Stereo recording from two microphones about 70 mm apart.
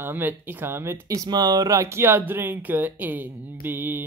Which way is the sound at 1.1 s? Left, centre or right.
Right.